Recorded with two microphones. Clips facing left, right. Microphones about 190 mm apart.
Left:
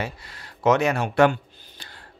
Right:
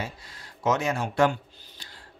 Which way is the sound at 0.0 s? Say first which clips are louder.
Left 4 dB; 65° left (ahead or behind).